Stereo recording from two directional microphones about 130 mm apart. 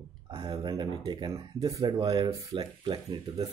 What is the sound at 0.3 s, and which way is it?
Speech, 30° right (ahead or behind).